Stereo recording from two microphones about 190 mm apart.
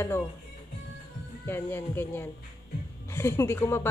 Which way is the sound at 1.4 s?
10° left (ahead or behind).